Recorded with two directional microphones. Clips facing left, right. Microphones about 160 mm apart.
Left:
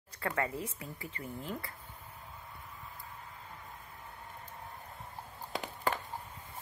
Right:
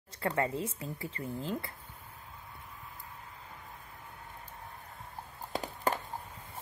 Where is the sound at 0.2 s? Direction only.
30° right (ahead or behind).